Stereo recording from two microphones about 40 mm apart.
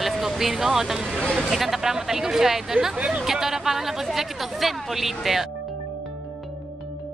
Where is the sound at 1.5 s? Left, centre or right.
Centre.